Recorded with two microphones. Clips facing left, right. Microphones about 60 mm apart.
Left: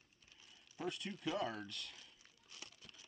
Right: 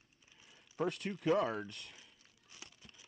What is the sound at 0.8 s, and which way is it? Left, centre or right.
Speech, right.